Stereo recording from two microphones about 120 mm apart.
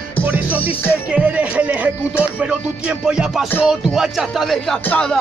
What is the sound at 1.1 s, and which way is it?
Speech, 10° right (ahead or behind).